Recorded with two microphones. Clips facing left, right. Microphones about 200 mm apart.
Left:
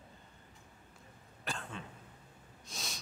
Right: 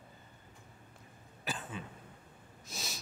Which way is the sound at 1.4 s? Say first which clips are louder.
Right 1 dB; 5° right (ahead or behind).